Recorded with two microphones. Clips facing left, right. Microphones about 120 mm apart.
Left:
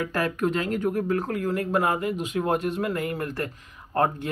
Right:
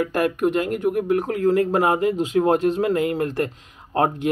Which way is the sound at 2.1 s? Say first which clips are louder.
Right 7 dB; 30° right (ahead or behind).